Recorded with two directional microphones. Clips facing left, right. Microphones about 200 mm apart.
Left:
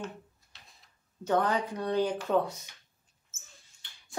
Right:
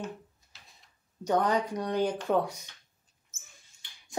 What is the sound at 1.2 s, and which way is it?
Speech, 15° right (ahead or behind).